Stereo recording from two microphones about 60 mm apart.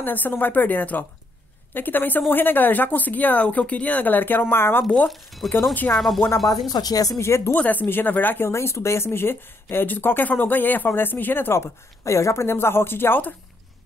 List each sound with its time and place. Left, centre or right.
0.0 s speech: left
4.8 s speech: centre
6.7 s speech: left
7.2 s speech: left
7.5 s speech: left
8.5 s speech: left